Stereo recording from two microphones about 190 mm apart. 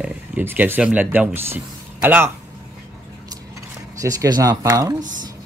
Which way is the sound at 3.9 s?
20° right (ahead or behind).